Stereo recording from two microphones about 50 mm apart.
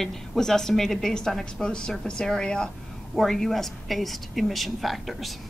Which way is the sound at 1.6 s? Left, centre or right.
Centre.